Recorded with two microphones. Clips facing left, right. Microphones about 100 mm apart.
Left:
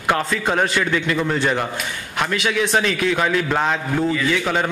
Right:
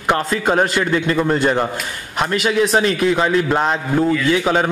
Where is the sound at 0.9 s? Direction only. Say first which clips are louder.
Right 3 dB; 35° right (ahead or behind).